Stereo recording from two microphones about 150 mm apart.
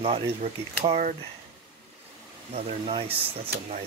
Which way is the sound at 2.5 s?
40° right (ahead or behind).